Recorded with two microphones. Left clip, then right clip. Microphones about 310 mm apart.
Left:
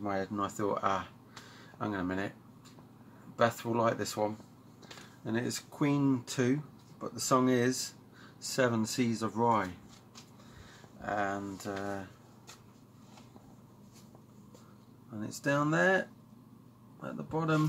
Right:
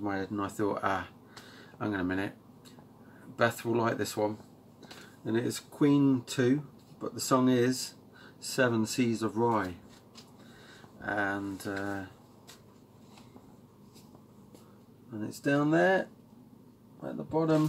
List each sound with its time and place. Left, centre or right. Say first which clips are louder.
0.0 s speech: even; centre
3.3 s speech: right 1 dB; centre
11.0 s speech: right 2 dB; centre
15.1 s speech: right 2 dB; centre